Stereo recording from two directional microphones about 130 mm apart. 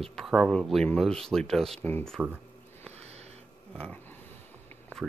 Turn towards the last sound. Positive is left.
turn(degrees=10)  # may be behind; listen again after turning